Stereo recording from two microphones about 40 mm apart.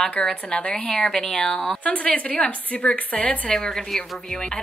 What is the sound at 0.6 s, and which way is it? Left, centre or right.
Speech, left.